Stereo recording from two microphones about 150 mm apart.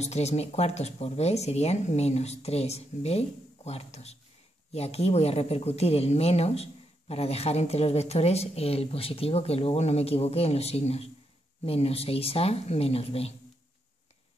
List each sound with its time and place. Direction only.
0.0 s speech: 45° left (ahead or behind)